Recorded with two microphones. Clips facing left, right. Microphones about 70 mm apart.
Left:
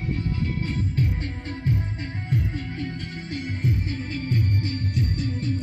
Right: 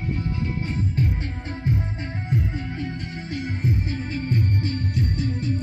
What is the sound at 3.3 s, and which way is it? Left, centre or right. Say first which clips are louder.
Music: right 1 dB; centre.